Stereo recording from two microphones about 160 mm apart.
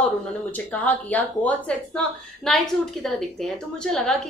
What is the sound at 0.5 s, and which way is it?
Speech, 10° left (ahead or behind).